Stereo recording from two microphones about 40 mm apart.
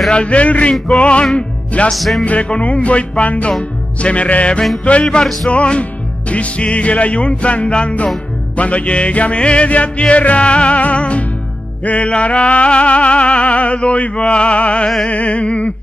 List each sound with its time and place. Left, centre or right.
0.1 s music: left
1.3 s speech: left
1.9 s music: centre
2.2 s music: left
5.2 s music: centre
5.5 s music: left